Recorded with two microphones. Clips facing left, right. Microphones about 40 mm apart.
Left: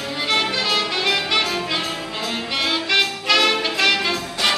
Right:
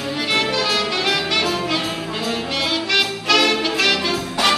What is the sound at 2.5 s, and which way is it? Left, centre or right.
Music, centre.